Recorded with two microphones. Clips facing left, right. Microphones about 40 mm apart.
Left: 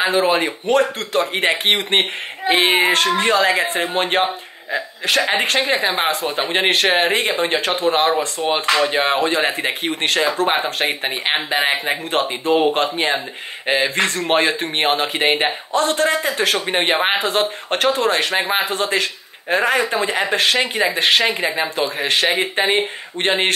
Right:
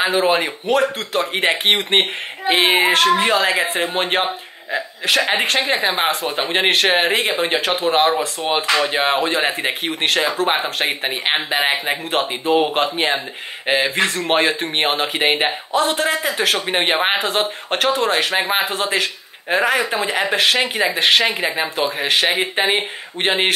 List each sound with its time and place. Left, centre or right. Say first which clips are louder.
0.0 s speech: even; centre